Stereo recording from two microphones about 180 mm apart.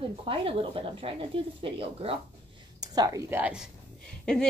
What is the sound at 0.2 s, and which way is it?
Speech, 30° right (ahead or behind).